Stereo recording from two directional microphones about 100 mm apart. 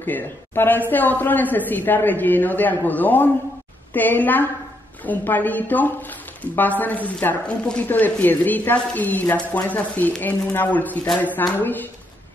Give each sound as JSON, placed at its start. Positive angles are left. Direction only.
{"t": 0.0, "sound": "speech", "side_deg": 20}